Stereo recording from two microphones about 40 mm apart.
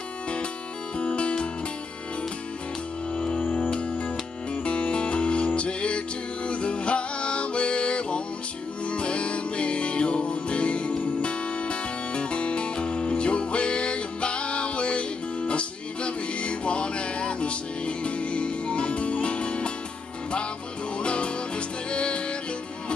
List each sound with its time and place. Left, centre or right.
0.9 s music: left
4.6 s music: left
21.0 s music: left